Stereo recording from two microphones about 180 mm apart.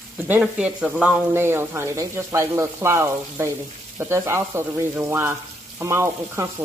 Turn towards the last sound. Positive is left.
turn(degrees=-15)  # may be behind; listen again after turning